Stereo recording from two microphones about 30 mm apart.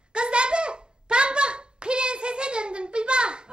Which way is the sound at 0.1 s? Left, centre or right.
Right.